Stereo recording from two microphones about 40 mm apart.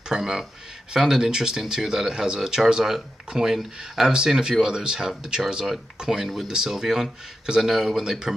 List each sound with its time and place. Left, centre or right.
0.1 s speech: centre